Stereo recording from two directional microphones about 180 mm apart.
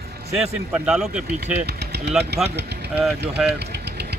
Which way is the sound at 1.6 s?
65° right (ahead or behind).